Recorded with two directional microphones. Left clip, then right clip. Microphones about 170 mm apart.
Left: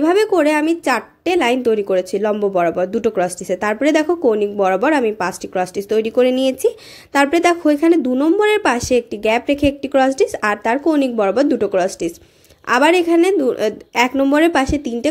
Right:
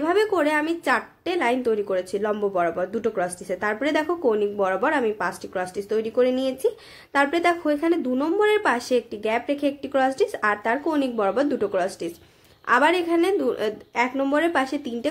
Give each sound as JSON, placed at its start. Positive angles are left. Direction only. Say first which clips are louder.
{"t": 0.0, "sound": "a woman's voice", "louder": "left 7 dB", "side_deg": 35}